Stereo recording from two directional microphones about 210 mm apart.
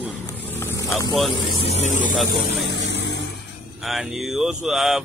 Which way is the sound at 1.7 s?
35° left (ahead or behind).